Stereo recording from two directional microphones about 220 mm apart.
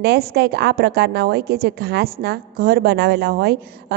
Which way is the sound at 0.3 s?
50° right (ahead or behind).